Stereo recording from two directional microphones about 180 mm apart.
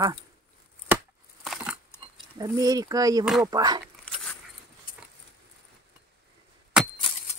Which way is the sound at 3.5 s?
20° right (ahead or behind).